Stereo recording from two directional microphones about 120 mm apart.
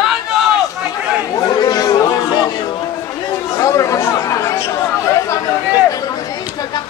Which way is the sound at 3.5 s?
25° left (ahead or behind).